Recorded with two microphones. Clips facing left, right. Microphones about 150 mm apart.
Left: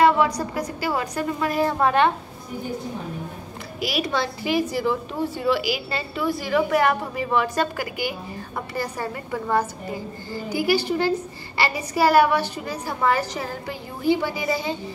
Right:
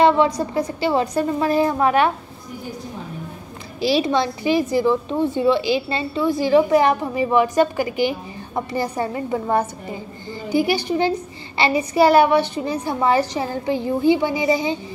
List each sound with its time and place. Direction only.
0.0 s a woman's voice: 25° right (ahead or behind)
1.6 s a child's voice: 10° right (ahead or behind)
3.8 s a woman's voice: 25° right (ahead or behind)
5.3 s a woman's voice: 25° right (ahead or behind)